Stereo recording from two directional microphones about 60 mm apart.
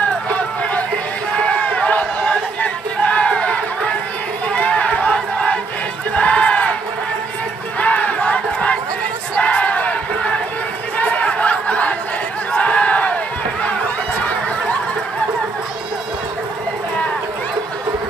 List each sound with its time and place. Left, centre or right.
1.6 s crowd: left
4.6 s run: left
5.1 s crowd: centre
6.1 s a sound: left
7.8 s battle cry: left
11.0 s a sound: left
12.5 s battle cry: left